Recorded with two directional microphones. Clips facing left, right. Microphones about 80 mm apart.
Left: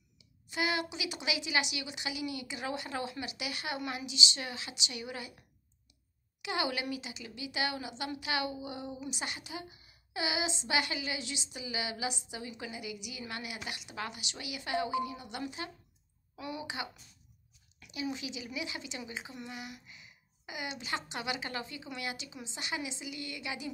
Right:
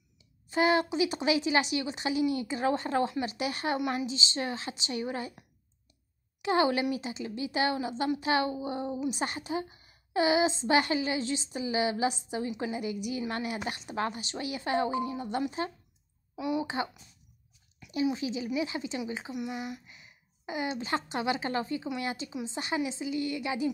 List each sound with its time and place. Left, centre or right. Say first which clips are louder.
0.2 s a woman's voice: right 8 dB; right
6.4 s a woman's voice: right 8 dB; right
16.3 s a sound: right 10 dB; centre
16.6 s a woman's voice: right 7 dB; right
18.1 s a woman's voice: right 9 dB; right